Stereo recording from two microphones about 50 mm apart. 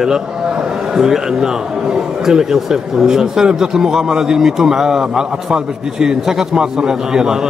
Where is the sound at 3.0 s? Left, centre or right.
Centre.